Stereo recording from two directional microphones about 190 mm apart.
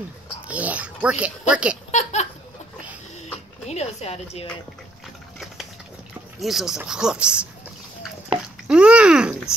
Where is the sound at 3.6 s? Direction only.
35° left (ahead or behind).